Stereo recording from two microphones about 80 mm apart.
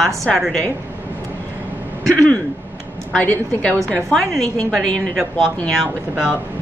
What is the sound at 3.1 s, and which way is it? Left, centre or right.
Speech, centre.